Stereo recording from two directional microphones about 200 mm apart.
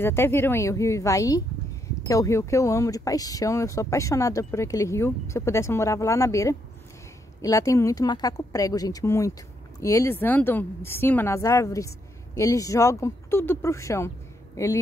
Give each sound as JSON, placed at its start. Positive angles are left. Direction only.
{"t": 0.0, "sound": "speech", "side_deg": 10}